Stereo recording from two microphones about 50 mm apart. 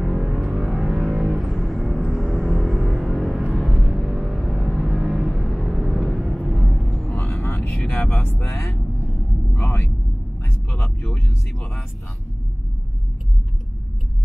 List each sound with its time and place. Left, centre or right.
0.1 s scary music: centre
0.5 s music: centre
1.4 s music: centre
6.5 s vehicle: centre
6.8 s vehicle: centre
7.2 s vehicle: left
7.4 s vehicle: left
7.8 s vehicle: left
9.6 s a sound: left